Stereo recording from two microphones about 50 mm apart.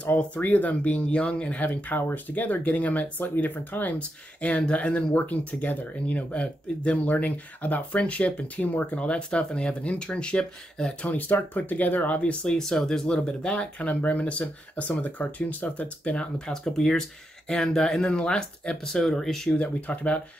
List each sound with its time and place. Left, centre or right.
0.2 s speech: left
4.4 s speech: left
11.1 s speech: left
12.2 s speech: left
12.5 s speech: centre
13.8 s speech: left
16.0 s speech: left
19.5 s speech: left